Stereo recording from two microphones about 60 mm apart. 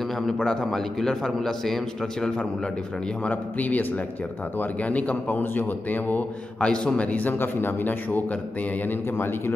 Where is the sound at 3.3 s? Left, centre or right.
Left.